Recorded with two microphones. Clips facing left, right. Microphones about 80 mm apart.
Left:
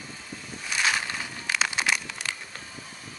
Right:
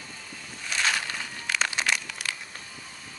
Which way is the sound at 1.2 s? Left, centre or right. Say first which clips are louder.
Left 1 dB; centre.